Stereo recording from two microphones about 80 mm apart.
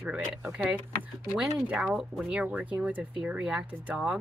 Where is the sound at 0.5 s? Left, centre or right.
Centre.